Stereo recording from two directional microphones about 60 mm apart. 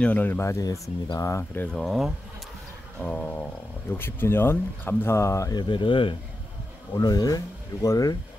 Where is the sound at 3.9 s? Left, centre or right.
Left.